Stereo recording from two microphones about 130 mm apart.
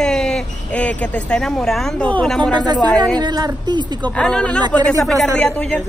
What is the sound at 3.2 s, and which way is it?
Speech, 35° right (ahead or behind).